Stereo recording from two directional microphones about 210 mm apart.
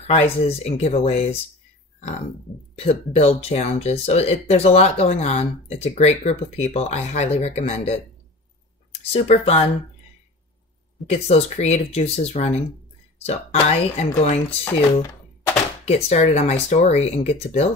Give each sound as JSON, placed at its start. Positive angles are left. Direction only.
{"t": 0.0, "sound": "speech", "side_deg": 30}
{"t": 2.8, "sound": "speech", "side_deg": 30}
{"t": 9.1, "sound": "speech", "side_deg": 30}
{"t": 11.1, "sound": "speech", "side_deg": 30}
{"t": 15.8, "sound": "speech", "side_deg": 30}